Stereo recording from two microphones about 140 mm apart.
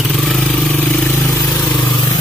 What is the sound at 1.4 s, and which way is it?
Vehicle, 25° left (ahead or behind).